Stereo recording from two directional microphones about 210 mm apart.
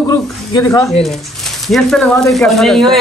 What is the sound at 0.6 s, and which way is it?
Speech, 15° left (ahead or behind).